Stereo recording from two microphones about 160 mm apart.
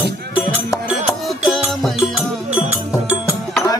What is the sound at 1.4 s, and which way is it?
Music, centre (ahead or behind).